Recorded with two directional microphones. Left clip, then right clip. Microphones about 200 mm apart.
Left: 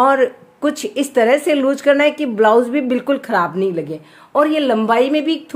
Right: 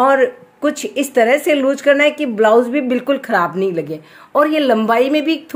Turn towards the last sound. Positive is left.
turn(degrees=-5)  # may be behind; listen again after turning